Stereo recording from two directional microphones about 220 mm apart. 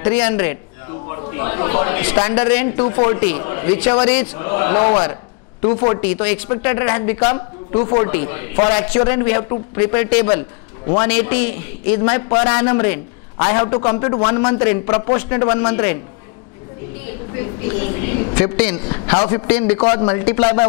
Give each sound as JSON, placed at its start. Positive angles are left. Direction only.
{"t": 0.0, "sound": "a man's voice", "side_deg": 15}
{"t": 4.5, "sound": "a man's voice", "side_deg": 20}
{"t": 6.2, "sound": "a man's voice", "side_deg": 10}
{"t": 8.1, "sound": "a man's voice", "side_deg": 15}
{"t": 18.3, "sound": "a man's voice", "side_deg": 15}
{"t": 19.1, "sound": "a man's voice", "side_deg": 25}
{"t": 19.4, "sound": "a man's voice", "side_deg": 10}
{"t": 19.8, "sound": "a man's voice", "side_deg": 25}